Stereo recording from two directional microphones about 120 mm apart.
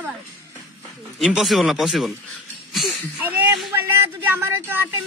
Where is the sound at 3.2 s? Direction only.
15° right (ahead or behind).